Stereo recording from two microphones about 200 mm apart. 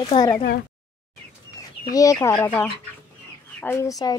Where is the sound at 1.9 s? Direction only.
15° left (ahead or behind).